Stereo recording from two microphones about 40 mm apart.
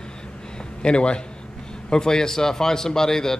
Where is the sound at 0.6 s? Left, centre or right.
Left.